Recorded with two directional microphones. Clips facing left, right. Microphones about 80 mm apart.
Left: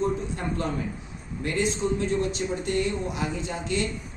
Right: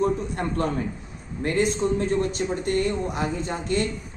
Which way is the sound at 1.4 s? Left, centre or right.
Right.